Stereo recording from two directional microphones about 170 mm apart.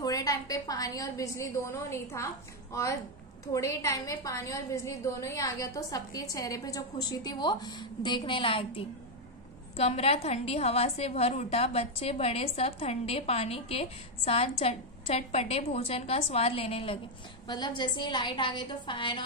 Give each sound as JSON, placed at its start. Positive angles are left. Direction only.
{"t": 0.0, "sound": "a woman's voice", "side_deg": 20}